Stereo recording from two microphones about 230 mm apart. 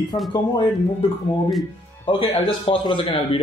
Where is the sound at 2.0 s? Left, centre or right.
Left.